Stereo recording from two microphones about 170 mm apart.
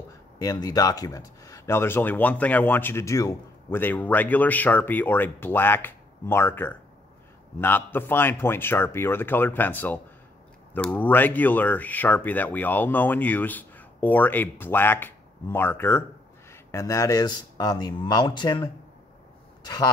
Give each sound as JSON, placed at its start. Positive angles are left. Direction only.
{"t": 0.4, "sound": "a man's voice", "side_deg": 20}